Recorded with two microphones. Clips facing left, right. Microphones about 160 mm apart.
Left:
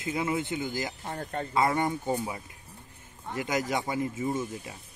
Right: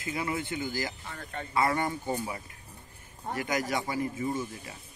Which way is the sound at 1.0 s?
40° left (ahead or behind).